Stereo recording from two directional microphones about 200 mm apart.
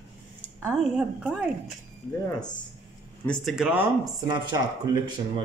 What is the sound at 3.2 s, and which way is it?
Speech, 5° left (ahead or behind).